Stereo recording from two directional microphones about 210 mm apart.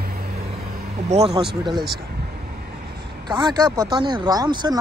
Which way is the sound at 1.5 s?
20° right (ahead or behind).